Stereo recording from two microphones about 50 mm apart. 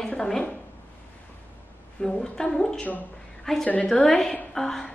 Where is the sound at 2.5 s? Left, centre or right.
Centre.